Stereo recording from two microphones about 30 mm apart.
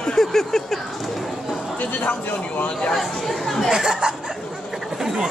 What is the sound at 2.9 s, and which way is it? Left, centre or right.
Speech, centre.